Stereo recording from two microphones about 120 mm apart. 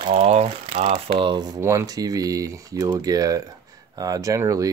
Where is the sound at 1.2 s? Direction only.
40° right (ahead or behind).